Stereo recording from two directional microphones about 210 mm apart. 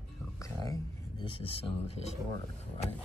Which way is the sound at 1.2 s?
25° left (ahead or behind).